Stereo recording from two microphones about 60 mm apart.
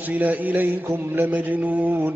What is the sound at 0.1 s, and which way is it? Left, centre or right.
A man's voice, right.